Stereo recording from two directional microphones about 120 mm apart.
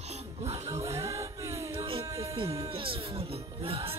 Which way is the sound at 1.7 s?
45° right (ahead or behind).